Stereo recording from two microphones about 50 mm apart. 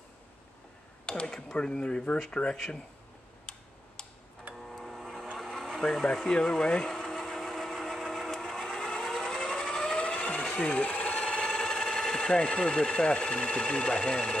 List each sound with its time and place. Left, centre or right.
1.0 s speech: centre
4.6 s a sound: centre
10.6 s speech: left